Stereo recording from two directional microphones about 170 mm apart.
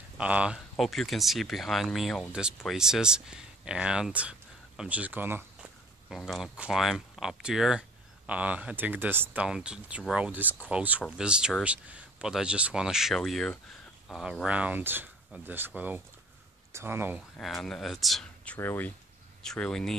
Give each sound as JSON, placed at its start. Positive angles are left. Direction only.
{"t": 0.2, "sound": "speech", "side_deg": -5}
{"t": 17.4, "sound": "speech", "side_deg": 0}